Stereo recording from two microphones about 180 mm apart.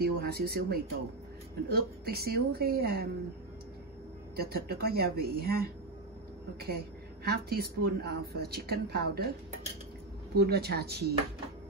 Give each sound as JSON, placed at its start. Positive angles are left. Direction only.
{"t": 0.0, "sound": "a woman's voice", "side_deg": -60}
{"t": 4.4, "sound": "a woman's voice", "side_deg": -60}
{"t": 7.2, "sound": "a woman's voice", "side_deg": -60}
{"t": 10.3, "sound": "a woman's voice", "side_deg": -65}